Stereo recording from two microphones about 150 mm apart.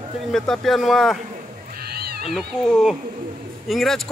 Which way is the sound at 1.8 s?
90° right.